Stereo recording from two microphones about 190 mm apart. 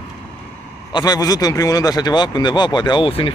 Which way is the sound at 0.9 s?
20° left (ahead or behind).